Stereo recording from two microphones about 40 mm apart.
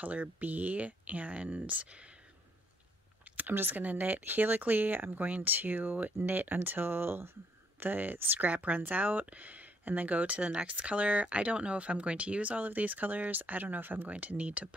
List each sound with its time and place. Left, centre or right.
0.0 s speech: right
3.3 s speech: right
3.8 s speech: right
7.8 s speech: right
14.0 s speech: right